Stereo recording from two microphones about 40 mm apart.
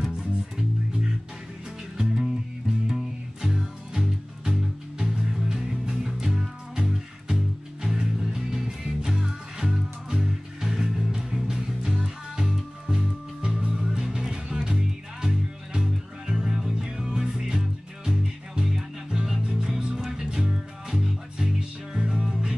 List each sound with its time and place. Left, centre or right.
0.1 s music: centre
3.5 s music: centre
13.7 s music: centre